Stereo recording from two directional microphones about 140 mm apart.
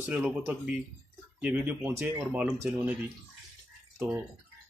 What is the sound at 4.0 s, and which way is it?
Speech, 15° right (ahead or behind).